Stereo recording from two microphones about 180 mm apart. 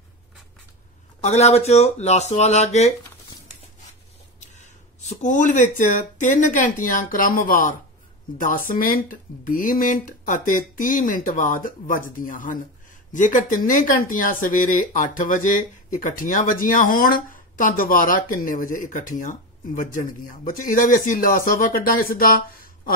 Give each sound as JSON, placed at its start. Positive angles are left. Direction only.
{"t": 1.2, "sound": "speech", "side_deg": 40}
{"t": 4.4, "sound": "speech", "side_deg": 40}